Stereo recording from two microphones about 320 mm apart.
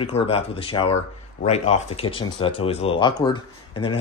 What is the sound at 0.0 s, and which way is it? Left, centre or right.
Speech, centre.